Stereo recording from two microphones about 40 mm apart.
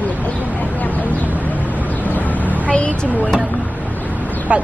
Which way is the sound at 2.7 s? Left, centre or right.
Left.